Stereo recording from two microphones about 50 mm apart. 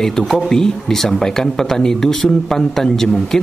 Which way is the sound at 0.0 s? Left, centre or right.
Centre.